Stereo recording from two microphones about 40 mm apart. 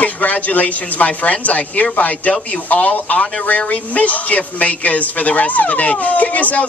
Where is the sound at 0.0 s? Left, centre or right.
Left.